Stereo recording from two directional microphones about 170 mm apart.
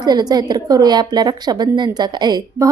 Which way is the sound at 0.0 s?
25° right (ahead or behind).